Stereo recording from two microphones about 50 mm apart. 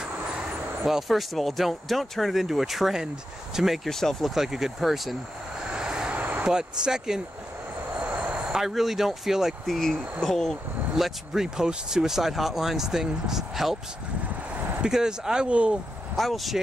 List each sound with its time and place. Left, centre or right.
0.8 s speech: centre
3.9 s speech: centre
4.3 s speech: centre
5.7 s vehicle: centre
6.1 s vehicle: right
6.5 s speech: centre
8.0 s vehicle: centre
8.5 s speech: centre
9.7 s speech: centre
11.0 s speech: centre
14.9 s speech: centre
16.2 s speech: centre